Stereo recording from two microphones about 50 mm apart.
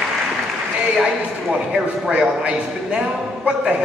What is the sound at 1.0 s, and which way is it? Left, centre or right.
A man's voice, centre.